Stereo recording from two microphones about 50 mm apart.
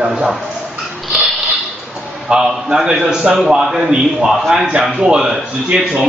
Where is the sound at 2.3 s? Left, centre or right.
Centre.